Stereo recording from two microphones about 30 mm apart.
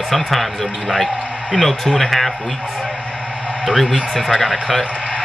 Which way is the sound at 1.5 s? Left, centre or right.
Centre.